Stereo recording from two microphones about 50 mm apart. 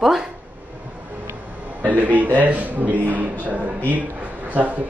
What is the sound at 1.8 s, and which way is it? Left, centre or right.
A man's voice, right.